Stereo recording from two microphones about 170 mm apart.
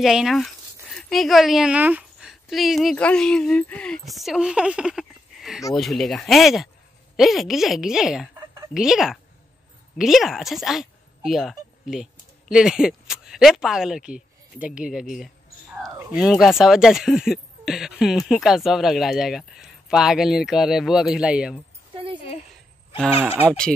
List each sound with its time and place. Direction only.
0.0 s a woman's voice: centre (ahead or behind)
15.9 s speech: 15° right (ahead or behind)
16.2 s speech: centre (ahead or behind)
21.9 s a sound: 30° right (ahead or behind)